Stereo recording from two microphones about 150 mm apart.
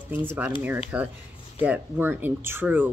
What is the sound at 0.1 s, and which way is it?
Speech, 10° right (ahead or behind).